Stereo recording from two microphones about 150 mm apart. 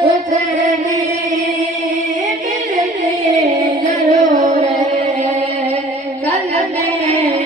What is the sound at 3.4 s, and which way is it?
Music, 50° right (ahead or behind).